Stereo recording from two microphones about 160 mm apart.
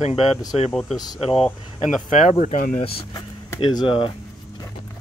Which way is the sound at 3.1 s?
25° left (ahead or behind).